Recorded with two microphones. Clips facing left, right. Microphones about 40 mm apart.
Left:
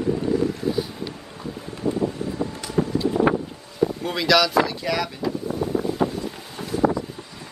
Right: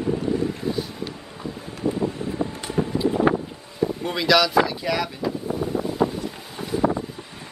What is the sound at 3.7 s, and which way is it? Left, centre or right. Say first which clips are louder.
Wind noise: left 1 dB; centre.